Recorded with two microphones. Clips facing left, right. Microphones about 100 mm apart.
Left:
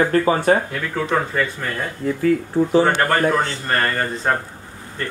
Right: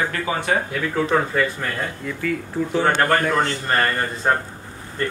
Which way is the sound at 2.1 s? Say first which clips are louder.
Left 9 dB; 35° left (ahead or behind).